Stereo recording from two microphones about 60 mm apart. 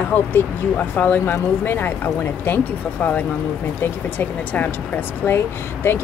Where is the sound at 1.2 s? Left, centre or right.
Left.